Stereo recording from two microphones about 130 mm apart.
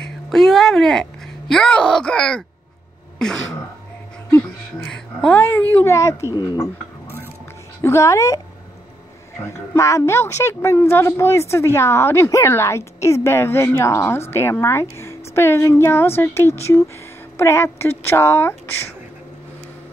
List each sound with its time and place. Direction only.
0.3 s speech: 5° left (ahead or behind)
4.8 s speech: 5° left (ahead or behind)
6.3 s speech: 30° left (ahead or behind)
7.8 s a woman's voice: 20° left (ahead or behind)
9.4 s a woman's voice: 20° left (ahead or behind)